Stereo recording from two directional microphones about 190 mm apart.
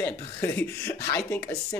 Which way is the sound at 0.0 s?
10° left (ahead or behind).